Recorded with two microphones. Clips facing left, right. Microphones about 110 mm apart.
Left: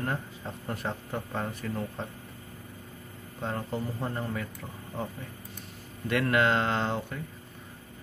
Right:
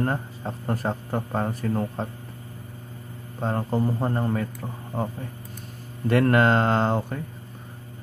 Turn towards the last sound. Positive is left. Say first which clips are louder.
# right 7 dB
turn(degrees=-40)  # may be behind; listen again after turning